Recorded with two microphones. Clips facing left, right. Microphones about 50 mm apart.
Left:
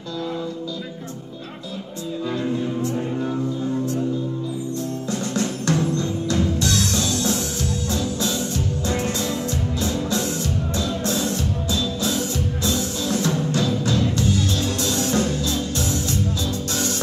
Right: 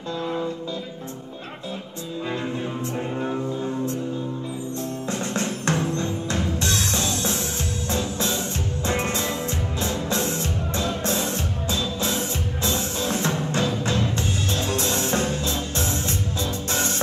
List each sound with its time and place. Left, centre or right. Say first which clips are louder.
3.2 s music: left 2 dB; right
5.3 s music: left 3 dB; right